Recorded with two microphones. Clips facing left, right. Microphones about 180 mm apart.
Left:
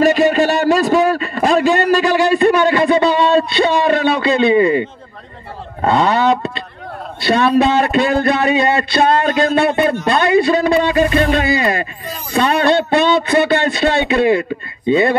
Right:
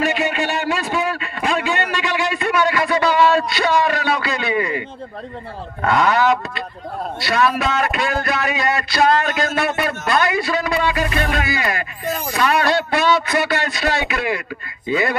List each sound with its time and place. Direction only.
0.0 s a man's voice: 35° left (ahead or behind)